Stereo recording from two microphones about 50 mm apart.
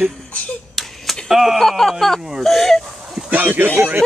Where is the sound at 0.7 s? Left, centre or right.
Centre.